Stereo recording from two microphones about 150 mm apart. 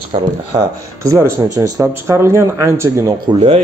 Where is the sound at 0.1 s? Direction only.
40° right (ahead or behind).